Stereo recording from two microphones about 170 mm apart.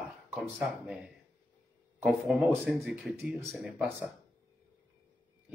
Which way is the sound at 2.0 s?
Centre (ahead or behind).